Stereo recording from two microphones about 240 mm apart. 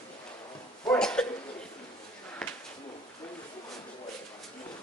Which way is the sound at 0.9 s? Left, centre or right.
Centre.